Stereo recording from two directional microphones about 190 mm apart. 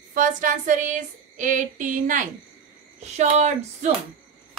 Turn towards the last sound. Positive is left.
turn(degrees=-35)  # may be behind; listen again after turning